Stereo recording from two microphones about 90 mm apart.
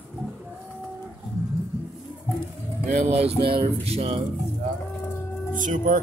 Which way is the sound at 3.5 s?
90° right.